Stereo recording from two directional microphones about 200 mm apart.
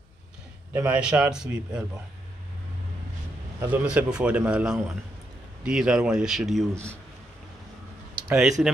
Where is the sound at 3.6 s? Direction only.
5° right (ahead or behind).